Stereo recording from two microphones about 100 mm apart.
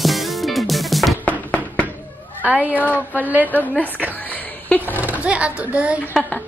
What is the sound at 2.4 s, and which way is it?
Cat, 15° right (ahead or behind).